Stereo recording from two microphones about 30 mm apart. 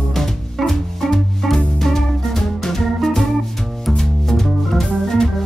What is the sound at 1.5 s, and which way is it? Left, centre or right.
Music, centre.